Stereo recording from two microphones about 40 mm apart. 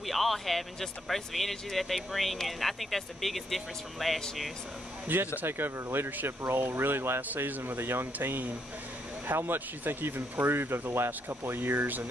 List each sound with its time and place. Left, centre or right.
0.0 s speech: centre
5.0 s speech: right
5.4 s speech: right
7.3 s speech: right
11.4 s speech: right